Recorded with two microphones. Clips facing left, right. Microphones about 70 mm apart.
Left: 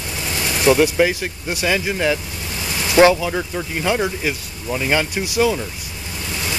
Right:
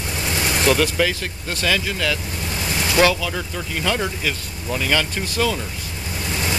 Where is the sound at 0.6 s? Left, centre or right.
Centre.